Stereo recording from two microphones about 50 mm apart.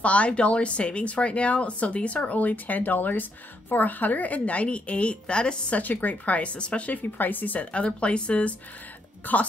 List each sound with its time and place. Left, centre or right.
0.0 s speech: left
5.8 s speech: left
7.0 s speech: left